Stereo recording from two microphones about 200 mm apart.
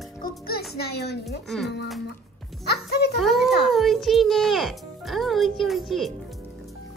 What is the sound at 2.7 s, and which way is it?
Music, 55° left (ahead or behind).